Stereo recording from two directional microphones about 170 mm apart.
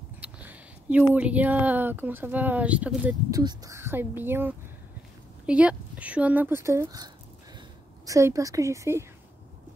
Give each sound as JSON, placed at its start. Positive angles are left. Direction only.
{"t": 0.2, "sound": "a sound", "side_deg": -10}
{"t": 1.1, "sound": "speech", "side_deg": -10}
{"t": 3.3, "sound": "a woman's voice", "side_deg": -20}